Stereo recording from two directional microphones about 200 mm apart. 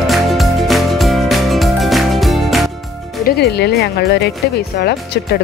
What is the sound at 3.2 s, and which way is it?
Speech, 55° left (ahead or behind).